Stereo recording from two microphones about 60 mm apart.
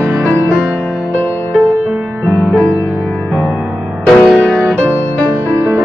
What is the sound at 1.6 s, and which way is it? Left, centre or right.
Music, right.